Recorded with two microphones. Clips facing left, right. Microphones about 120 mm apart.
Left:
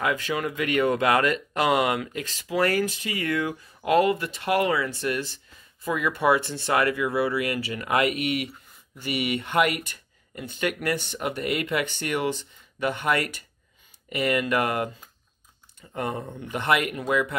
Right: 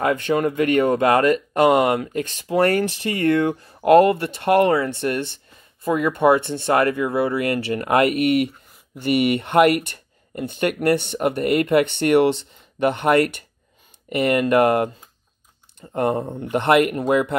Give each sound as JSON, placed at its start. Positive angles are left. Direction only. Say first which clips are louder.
{"t": 0.1, "sound": "speech", "louder": "right 7 dB", "side_deg": -45}
{"t": 2.8, "sound": "speech", "louder": "right 6 dB", "side_deg": -60}
{"t": 6.4, "sound": "speech", "louder": "right 7 dB", "side_deg": -25}
{"t": 6.7, "sound": "speech", "louder": "right 5 dB", "side_deg": -40}
{"t": 7.1, "sound": "speech", "louder": "right 4 dB", "side_deg": -25}
{"t": 7.3, "sound": "speech", "louder": "right 6 dB", "side_deg": -55}
{"t": 16.0, "sound": "speech", "louder": "right 9 dB", "side_deg": -40}
{"t": 16.4, "sound": "speech", "louder": "right 8 dB", "side_deg": -60}